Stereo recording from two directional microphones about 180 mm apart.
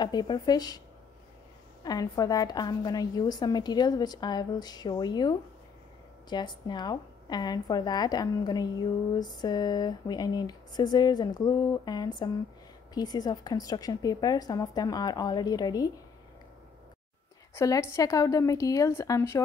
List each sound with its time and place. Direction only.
0.0 s speech: 25° left (ahead or behind)
1.8 s speech: 20° left (ahead or behind)
17.6 s a woman's voice: 15° left (ahead or behind)